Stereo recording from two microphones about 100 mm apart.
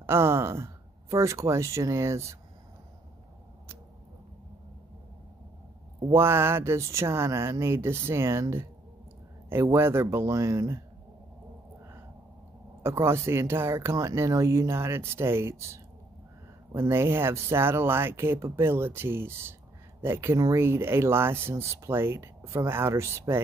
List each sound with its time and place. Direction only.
0.0 s speech: 25° right (ahead or behind)
6.1 s speech: 25° right (ahead or behind)
12.8 s speech: 25° right (ahead or behind)